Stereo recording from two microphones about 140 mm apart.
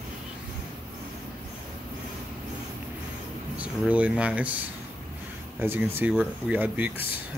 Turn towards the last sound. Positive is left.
turn(degrees=-10)  # may be behind; listen again after turning